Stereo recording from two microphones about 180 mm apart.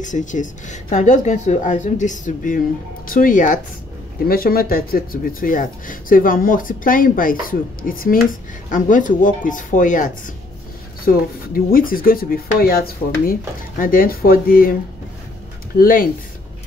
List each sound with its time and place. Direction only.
0.0 s speech: 45° left (ahead or behind)
15.8 s speech: 50° left (ahead or behind)